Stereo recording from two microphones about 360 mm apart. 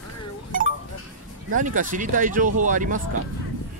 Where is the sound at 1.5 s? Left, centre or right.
Right.